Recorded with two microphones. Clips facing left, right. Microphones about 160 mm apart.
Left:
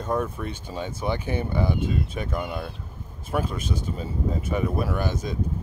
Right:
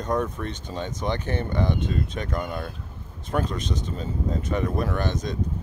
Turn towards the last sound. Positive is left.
turn(degrees=10)  # may be behind; listen again after turning